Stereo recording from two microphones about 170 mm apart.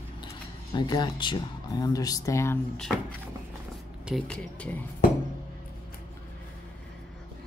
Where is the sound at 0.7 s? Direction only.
25° left (ahead or behind).